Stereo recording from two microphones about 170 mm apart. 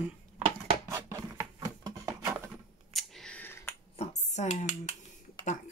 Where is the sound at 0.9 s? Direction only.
15° right (ahead or behind).